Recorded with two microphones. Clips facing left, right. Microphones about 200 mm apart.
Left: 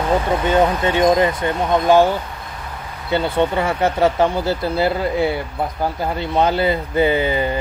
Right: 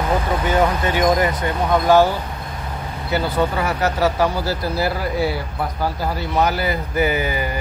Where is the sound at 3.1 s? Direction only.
25° left (ahead or behind).